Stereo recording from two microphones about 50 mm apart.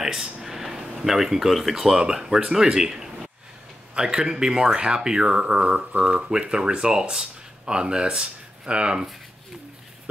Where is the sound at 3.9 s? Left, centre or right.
Centre.